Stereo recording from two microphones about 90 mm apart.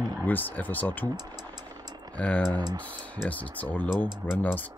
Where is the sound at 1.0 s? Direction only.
50° right (ahead or behind).